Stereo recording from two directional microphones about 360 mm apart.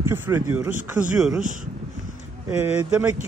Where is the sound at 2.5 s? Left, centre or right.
Centre.